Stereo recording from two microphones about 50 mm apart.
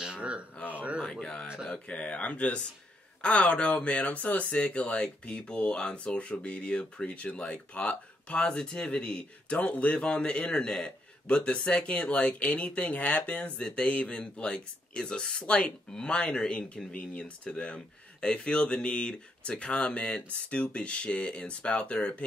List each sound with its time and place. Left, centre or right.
0.0 s a sound: right
1.0 s speech: left
13.6 s speech: centre